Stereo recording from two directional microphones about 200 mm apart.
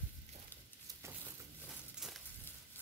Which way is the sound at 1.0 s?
15° right (ahead or behind).